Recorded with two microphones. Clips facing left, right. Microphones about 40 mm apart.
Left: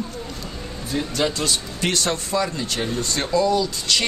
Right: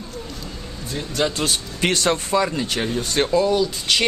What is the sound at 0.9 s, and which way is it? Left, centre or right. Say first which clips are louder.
Speech: even; centre.